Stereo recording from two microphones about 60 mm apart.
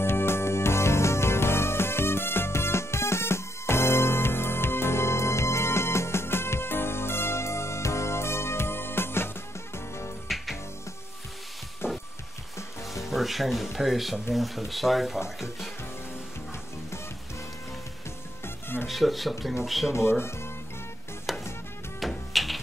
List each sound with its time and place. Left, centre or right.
0.0 s music: left
10.2 s music: centre
11.8 s music: left
12.5 s music: left
13.1 s speech: centre
18.4 s music: left
18.9 s speech: centre
19.9 s speech: left
21.3 s music: centre